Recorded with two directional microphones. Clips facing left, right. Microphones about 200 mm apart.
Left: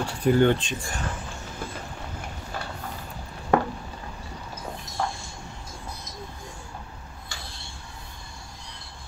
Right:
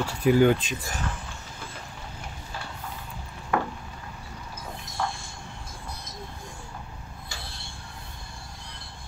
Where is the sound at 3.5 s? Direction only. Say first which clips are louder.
Left 5 dB; 30° left (ahead or behind).